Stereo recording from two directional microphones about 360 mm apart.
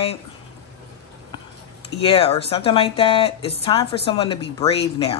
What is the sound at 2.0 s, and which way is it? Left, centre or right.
Speech, centre.